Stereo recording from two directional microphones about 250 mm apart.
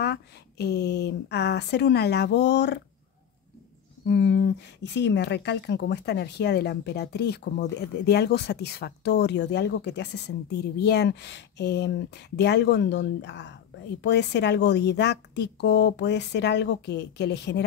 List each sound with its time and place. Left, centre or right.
0.0 s speech: left
4.0 s speech: left